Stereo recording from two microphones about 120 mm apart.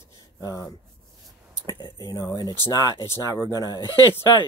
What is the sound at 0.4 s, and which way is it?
Speech, 30° left (ahead or behind).